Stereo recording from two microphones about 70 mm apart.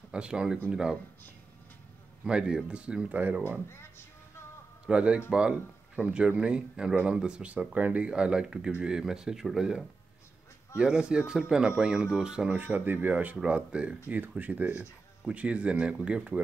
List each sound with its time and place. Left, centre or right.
0.1 s speech: centre
2.2 s speech: centre
3.6 s speech: left
4.8 s speech: centre
12.5 s speech: right